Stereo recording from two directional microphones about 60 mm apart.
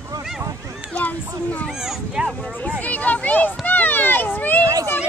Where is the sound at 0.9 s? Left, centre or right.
Left.